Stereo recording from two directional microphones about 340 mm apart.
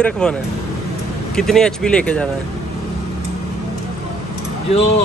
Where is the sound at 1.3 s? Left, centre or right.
Centre.